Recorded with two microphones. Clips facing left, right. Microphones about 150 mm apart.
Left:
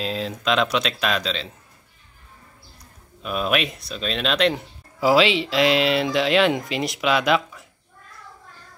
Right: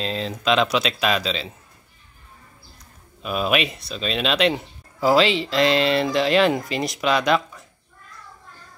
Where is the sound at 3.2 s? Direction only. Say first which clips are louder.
Right 1 dB; centre (ahead or behind).